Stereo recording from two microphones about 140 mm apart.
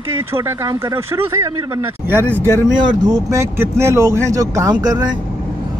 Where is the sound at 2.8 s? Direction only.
30° right (ahead or behind).